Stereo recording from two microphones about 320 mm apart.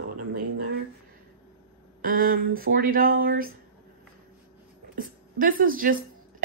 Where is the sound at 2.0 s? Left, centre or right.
Right.